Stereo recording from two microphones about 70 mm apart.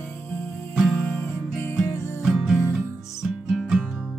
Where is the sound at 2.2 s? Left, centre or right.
Centre.